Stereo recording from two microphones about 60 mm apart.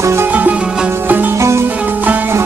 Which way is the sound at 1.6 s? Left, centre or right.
Right.